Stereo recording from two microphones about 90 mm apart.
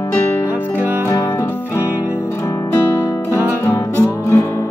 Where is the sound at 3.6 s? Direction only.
30° left (ahead or behind).